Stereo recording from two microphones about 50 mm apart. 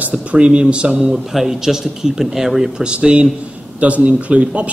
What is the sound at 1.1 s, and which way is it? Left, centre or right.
A man's voice, centre.